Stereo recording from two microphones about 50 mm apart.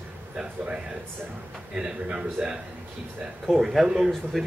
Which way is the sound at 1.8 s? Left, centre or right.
Centre.